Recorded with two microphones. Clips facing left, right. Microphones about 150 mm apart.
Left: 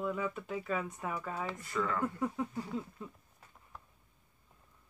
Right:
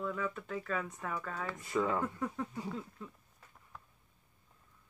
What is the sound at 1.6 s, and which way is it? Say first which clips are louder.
Speech: right 3 dB; 20° right (ahead or behind).